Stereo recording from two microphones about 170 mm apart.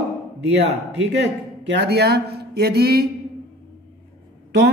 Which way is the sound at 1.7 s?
75° right (ahead or behind).